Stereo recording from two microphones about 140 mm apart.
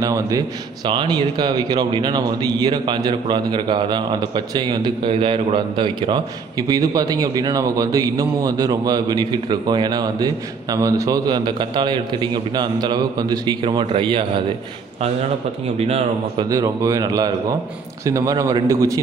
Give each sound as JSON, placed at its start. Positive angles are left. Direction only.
{"t": 0.0, "sound": "a man's voice", "side_deg": -25}
{"t": 15.8, "sound": "speech", "side_deg": -45}
{"t": 16.4, "sound": "a man's voice", "side_deg": -25}